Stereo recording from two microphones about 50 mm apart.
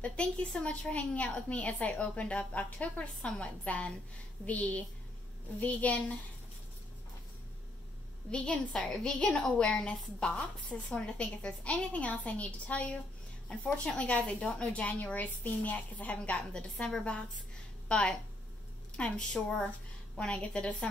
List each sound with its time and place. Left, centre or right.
0.0 s a woman's voice: left
8.3 s a woman's voice: left